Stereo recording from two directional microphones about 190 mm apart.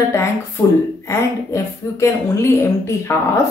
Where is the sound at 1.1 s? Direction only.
15° left (ahead or behind).